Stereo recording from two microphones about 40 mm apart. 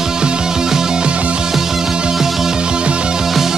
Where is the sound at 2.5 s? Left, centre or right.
Right.